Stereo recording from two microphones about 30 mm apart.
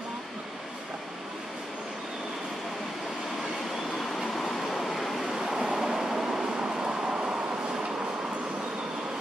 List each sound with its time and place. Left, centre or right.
4.0 s vehicle: centre
5.4 s vehicle: centre
7.1 s vehicle: right